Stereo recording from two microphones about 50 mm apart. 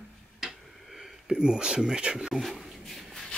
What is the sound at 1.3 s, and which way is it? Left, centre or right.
Speech, centre.